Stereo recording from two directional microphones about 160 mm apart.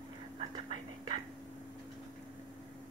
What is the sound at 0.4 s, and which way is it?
Whispering, 30° right (ahead or behind).